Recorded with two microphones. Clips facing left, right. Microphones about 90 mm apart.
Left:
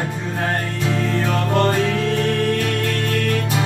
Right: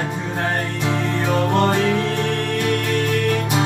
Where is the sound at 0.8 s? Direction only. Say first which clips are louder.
Left 1 dB; 20° right (ahead or behind).